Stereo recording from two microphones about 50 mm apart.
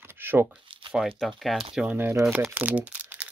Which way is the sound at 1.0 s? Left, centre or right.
Centre.